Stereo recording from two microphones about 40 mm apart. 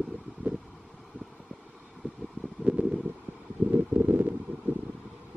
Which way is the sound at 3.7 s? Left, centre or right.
Right.